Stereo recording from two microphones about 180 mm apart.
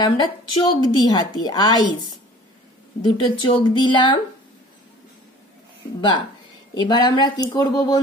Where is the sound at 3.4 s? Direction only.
25° left (ahead or behind).